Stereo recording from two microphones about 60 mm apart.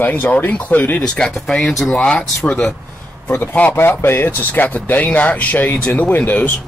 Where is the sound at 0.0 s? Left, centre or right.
Left.